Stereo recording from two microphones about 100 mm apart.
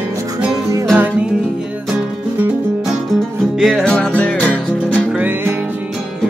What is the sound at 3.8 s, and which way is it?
Music, 10° left (ahead or behind).